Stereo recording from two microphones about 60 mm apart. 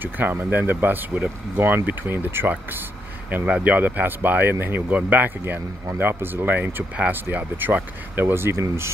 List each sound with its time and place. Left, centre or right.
0.0 s speech: right
3.4 s speech: centre
3.7 s speech: right